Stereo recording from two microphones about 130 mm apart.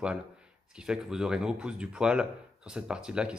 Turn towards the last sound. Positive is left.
turn(degrees=-5)  # may be behind; listen again after turning